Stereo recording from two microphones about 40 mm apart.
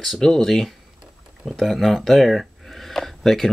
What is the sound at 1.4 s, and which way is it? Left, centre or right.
Speech, centre.